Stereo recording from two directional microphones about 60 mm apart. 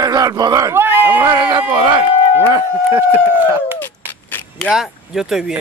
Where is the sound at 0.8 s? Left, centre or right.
Right.